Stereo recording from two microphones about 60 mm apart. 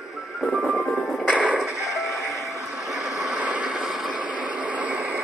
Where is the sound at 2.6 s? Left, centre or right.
Centre.